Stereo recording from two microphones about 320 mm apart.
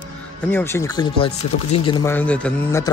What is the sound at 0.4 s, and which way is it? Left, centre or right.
Speech, centre.